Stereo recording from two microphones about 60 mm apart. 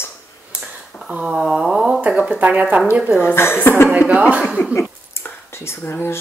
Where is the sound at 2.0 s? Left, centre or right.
Right.